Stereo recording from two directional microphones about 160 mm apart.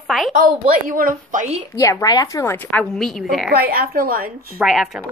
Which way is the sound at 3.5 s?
70° right (ahead or behind).